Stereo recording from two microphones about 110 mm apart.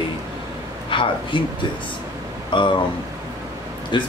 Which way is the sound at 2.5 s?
50° left (ahead or behind).